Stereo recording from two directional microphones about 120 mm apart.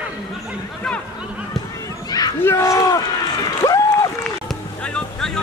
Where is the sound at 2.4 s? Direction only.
25° left (ahead or behind).